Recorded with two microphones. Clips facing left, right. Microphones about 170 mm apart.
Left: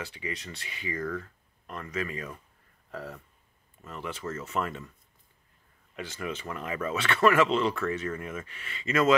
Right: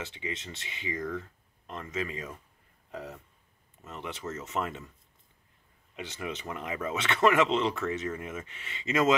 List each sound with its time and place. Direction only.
0.0 s speech: 20° right (ahead or behind)
5.9 s speech: 20° right (ahead or behind)